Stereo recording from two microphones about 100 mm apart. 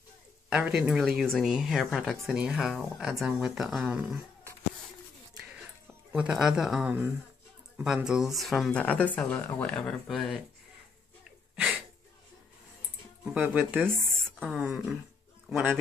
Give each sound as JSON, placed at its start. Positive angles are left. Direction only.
{"t": 0.5, "sound": "speech", "side_deg": -10}
{"t": 1.0, "sound": "speech", "side_deg": 5}
{"t": 6.1, "sound": "speech", "side_deg": -10}
{"t": 6.9, "sound": "speech", "side_deg": -20}
{"t": 7.7, "sound": "speech", "side_deg": -10}
{"t": 8.7, "sound": "speech", "side_deg": 15}
{"t": 13.2, "sound": "speech", "side_deg": -10}
{"t": 14.5, "sound": "speech", "side_deg": -5}